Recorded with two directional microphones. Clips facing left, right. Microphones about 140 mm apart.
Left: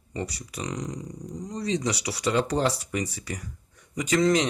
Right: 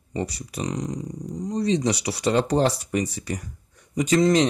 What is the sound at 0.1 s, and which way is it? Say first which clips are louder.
Speech: right 4 dB; 25° right (ahead or behind).